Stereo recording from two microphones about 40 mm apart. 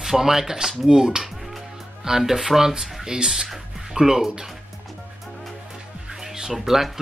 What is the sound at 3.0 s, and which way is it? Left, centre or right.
Speech, centre.